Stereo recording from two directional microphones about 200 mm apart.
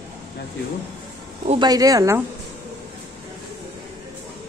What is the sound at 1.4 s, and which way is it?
Speech, 20° right (ahead or behind).